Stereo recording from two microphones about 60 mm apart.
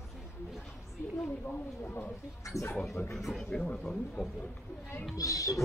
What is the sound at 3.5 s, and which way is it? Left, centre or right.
Speech, centre.